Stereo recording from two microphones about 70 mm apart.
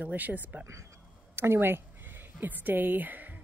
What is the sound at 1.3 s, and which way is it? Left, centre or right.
Speech, right.